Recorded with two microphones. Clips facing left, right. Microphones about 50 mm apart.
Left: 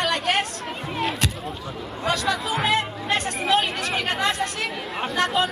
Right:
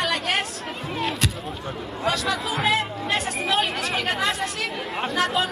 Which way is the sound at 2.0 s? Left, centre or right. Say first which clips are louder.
Left 1 dB; centre.